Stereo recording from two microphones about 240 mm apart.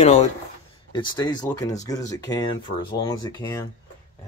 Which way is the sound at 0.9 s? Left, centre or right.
Centre.